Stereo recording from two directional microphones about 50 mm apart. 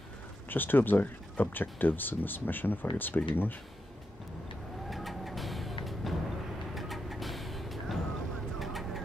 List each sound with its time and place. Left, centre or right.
0.5 s speech: left
4.8 s vehicle: centre